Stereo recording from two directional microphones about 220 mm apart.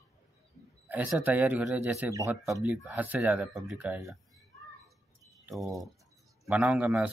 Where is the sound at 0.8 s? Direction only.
10° right (ahead or behind).